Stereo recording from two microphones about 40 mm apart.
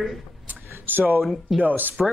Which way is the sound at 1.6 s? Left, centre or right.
Right.